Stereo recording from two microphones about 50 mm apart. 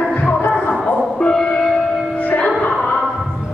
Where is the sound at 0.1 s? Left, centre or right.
Left.